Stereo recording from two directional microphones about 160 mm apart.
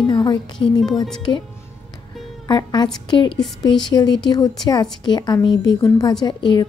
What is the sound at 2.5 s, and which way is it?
A woman's voice, 25° left (ahead or behind).